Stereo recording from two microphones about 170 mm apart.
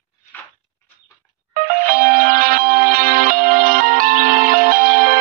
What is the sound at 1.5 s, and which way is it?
Music, 55° right (ahead or behind).